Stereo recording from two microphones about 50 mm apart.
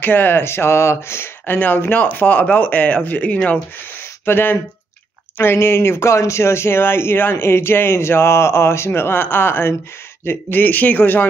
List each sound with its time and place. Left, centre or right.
0.0 s speech: left
1.4 s speech: left
4.3 s speech: left
10.2 s speech: left